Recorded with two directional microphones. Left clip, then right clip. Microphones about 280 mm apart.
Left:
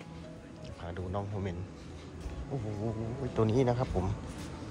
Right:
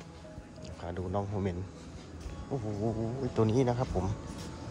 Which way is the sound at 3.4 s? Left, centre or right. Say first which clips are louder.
Even; centre.